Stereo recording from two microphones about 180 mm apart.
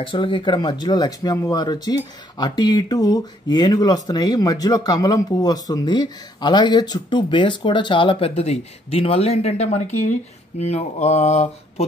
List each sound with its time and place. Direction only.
0.0 s speech: 30° left (ahead or behind)